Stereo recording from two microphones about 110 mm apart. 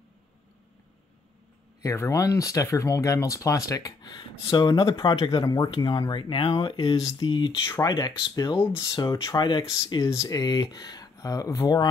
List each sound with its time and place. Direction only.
1.8 s speech: 30° left (ahead or behind); by 7.5 s 45° left (ahead or behind)
7.6 s speech: 25° left (ahead or behind)
7.9 s speech: 40° left (ahead or behind)